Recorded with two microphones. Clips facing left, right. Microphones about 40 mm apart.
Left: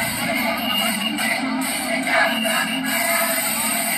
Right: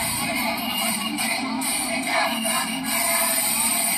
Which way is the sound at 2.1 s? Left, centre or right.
Left.